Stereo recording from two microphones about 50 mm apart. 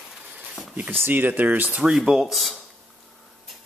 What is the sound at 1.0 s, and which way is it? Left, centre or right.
Speech, right.